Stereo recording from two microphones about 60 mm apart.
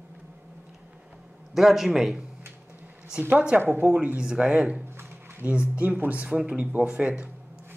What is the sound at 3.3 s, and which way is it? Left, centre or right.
Speech, right.